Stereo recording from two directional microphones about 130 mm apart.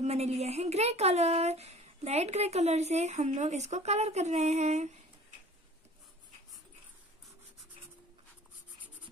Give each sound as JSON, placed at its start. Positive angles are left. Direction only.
{"t": 0.0, "sound": "speech", "side_deg": -55}